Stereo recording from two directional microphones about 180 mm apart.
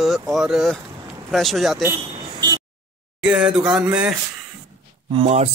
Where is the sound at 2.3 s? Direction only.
25° right (ahead or behind).